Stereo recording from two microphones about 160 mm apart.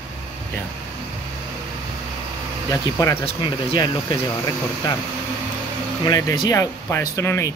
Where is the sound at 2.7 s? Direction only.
20° left (ahead or behind).